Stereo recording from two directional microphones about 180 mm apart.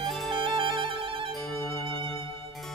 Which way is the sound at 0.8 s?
30° right (ahead or behind).